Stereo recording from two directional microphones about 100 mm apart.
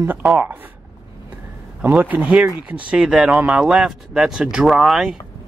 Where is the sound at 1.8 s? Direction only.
15° right (ahead or behind).